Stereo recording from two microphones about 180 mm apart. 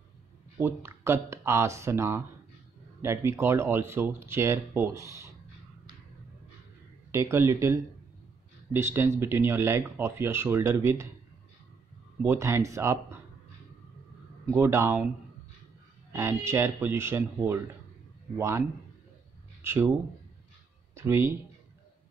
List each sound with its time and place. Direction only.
0.6 s speech: 15° right (ahead or behind)
7.1 s speech: 15° right (ahead or behind)
12.2 s speech: 15° right (ahead or behind)
14.5 s speech: 15° right (ahead or behind)
16.1 s speech: 15° right (ahead or behind)
19.6 s speech: 15° right (ahead or behind)
20.9 s speech: 15° right (ahead or behind)